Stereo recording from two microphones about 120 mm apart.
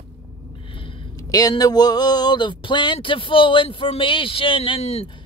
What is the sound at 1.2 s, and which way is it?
A woman's voice, 30° left (ahead or behind).